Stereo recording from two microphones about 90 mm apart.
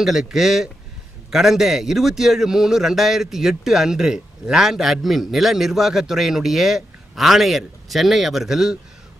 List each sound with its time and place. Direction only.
0.0 s a man's voice: 5° right (ahead or behind)